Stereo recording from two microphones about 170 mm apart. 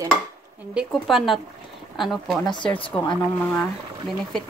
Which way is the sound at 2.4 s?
30° left (ahead or behind).